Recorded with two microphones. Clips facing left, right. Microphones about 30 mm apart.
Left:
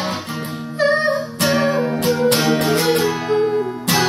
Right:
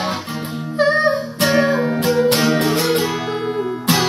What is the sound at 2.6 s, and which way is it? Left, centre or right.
Music, centre.